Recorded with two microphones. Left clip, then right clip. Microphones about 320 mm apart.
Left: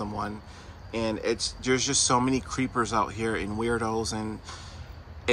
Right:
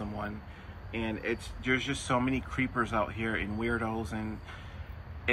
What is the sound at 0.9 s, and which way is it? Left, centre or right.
Speech, left.